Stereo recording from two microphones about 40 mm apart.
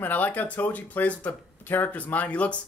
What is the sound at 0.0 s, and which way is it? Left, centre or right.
Speech, left.